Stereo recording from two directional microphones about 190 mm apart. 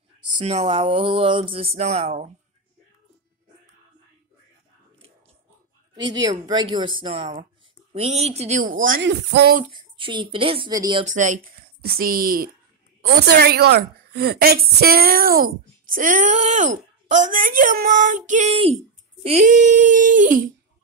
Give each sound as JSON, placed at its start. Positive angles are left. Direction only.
{"t": 0.4, "sound": "speech", "side_deg": -35}
{"t": 5.9, "sound": "speech", "side_deg": -20}
{"t": 9.0, "sound": "a woman's voice", "side_deg": -65}
{"t": 9.7, "sound": "speech", "side_deg": -25}
{"t": 11.1, "sound": "a woman's voice", "side_deg": -40}